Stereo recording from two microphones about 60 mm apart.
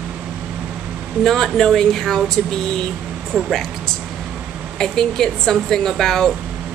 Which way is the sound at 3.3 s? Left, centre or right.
Centre.